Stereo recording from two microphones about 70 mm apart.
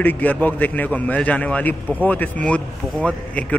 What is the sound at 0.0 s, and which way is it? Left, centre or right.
A man's voice, left.